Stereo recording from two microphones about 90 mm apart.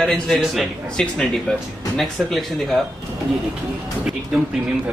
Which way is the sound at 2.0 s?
Centre (ahead or behind).